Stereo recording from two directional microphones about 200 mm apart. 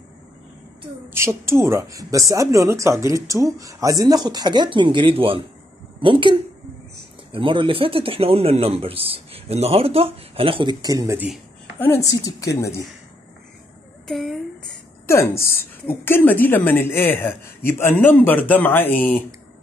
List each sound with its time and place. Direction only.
1.1 s a woman's voice: 15° right (ahead or behind)
7.3 s a man's voice: 25° right (ahead or behind)
11.8 s a woman's voice: 15° left (ahead or behind)
14.0 s a woman's voice: centre (ahead or behind)
15.0 s a woman's voice: 15° left (ahead or behind)